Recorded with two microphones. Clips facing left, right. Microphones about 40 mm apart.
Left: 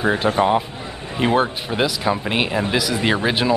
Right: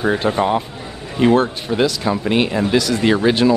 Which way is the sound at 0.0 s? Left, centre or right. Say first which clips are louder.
Even; centre.